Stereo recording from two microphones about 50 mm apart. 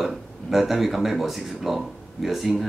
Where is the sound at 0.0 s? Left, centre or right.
Centre.